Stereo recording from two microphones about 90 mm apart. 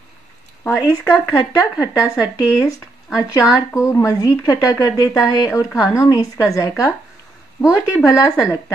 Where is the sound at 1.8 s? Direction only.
40° left (ahead or behind).